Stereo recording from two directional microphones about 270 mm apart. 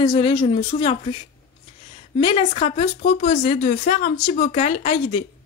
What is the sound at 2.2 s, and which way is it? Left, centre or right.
A woman's voice, left.